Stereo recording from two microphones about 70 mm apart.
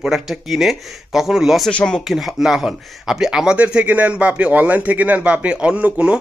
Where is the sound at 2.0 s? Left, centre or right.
Centre.